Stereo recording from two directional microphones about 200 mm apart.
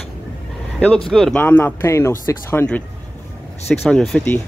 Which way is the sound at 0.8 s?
5° left (ahead or behind).